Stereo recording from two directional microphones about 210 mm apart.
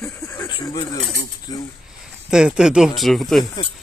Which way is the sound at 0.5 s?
20° left (ahead or behind).